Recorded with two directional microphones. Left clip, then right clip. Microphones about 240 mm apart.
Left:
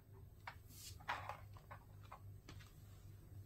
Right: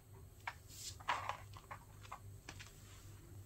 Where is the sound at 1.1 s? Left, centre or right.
Centre.